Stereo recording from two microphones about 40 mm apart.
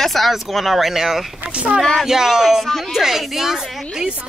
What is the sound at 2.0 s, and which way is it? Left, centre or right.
Speech, centre.